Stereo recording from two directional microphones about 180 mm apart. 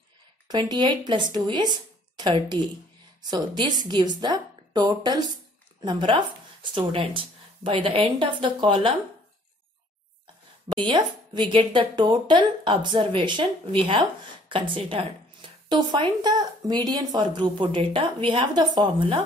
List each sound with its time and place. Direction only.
0.5 s speech: 25° right (ahead or behind)
10.7 s speech: 25° right (ahead or behind)